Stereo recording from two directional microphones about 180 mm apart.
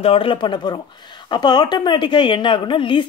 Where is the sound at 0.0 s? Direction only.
30° left (ahead or behind).